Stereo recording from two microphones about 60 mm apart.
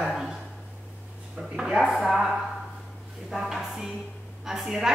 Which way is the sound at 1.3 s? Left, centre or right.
Centre.